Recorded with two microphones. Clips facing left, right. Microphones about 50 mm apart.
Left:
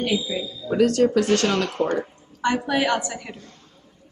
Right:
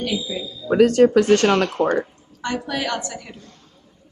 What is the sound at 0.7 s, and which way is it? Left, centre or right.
Speech, right.